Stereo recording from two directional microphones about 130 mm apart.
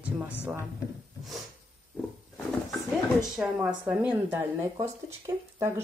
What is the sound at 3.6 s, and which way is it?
Speech, 10° right (ahead or behind).